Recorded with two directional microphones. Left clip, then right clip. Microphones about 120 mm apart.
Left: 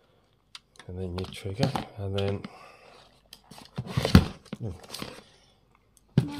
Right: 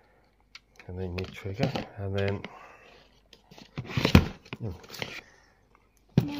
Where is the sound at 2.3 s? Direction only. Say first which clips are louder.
Even; 15° left (ahead or behind).